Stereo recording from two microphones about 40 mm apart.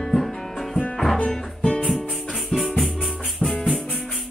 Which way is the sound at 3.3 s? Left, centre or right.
Left.